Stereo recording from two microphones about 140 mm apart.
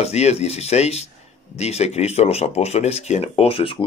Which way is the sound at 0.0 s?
50° left (ahead or behind).